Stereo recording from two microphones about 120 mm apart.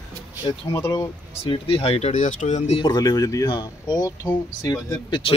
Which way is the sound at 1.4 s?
45° left (ahead or behind).